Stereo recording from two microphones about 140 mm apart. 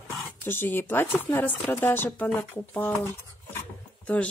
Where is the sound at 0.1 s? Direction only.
15° left (ahead or behind).